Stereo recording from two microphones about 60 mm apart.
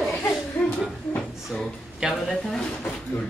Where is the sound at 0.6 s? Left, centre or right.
Left.